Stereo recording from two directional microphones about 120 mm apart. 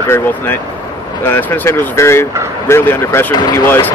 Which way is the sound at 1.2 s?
20° left (ahead or behind).